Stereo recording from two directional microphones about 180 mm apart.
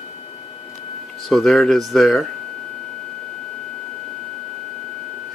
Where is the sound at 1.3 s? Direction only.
Centre (ahead or behind).